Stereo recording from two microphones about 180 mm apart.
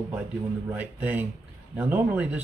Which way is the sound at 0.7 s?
10° right (ahead or behind).